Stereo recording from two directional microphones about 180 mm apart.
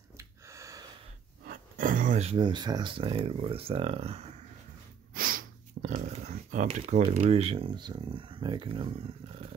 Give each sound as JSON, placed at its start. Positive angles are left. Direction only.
{"t": 0.2, "sound": "a sound", "side_deg": -15}
{"t": 1.4, "sound": "speech", "side_deg": -50}
{"t": 5.1, "sound": "sniff", "side_deg": -50}
{"t": 7.0, "sound": "speech", "side_deg": -35}